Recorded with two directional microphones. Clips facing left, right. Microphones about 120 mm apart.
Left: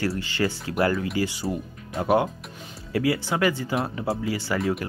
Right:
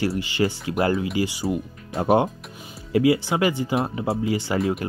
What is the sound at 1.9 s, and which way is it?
Speech, 30° right (ahead or behind).